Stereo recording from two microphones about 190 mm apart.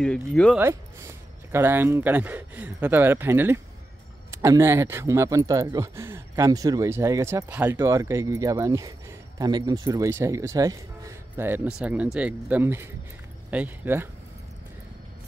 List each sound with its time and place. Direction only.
0.0 s speech: 5° left (ahead or behind)
0.6 s speech: 15° right (ahead or behind)